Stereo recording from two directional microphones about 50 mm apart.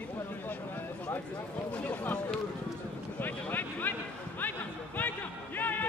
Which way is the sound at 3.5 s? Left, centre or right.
Left.